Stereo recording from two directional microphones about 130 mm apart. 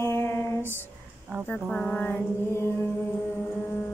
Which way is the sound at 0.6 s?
15° right (ahead or behind).